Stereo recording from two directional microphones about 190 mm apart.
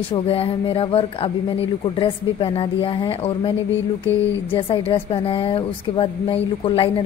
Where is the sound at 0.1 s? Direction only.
30° left (ahead or behind).